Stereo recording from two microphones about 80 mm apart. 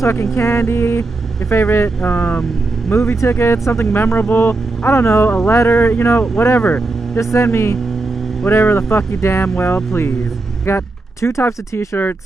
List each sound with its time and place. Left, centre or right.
0.0 s speech: left